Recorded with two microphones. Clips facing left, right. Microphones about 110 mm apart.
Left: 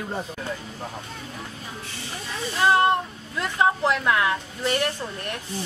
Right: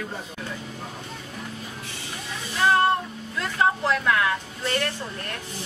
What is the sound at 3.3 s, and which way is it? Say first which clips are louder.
Speech: left 1 dB; 20° left (ahead or behind).